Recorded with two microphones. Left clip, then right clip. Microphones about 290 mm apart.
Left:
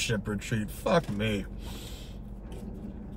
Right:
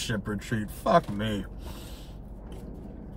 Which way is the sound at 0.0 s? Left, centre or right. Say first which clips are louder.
Left 1 dB; centre.